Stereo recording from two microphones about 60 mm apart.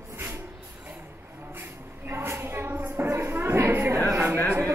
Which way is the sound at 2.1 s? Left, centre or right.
Right.